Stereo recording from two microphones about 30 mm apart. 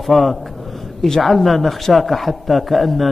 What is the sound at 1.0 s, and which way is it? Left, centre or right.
Speech, centre.